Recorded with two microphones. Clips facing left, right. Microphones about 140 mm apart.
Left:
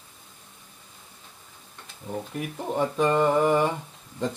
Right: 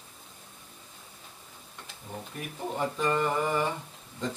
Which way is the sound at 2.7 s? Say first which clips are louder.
Left 6 dB; 65° left (ahead or behind).